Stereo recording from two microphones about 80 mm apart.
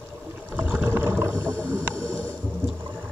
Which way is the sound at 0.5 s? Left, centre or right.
Centre.